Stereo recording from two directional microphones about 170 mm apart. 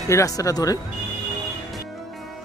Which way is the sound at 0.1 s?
20° left (ahead or behind).